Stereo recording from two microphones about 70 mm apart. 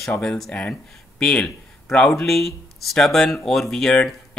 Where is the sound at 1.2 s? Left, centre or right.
Centre.